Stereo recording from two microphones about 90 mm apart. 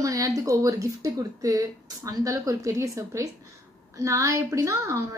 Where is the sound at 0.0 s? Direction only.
40° right (ahead or behind).